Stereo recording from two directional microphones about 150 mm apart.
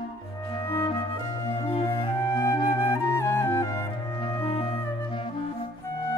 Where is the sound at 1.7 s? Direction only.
35° left (ahead or behind).